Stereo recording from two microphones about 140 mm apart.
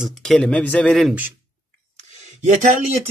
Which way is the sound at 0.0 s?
5° left (ahead or behind).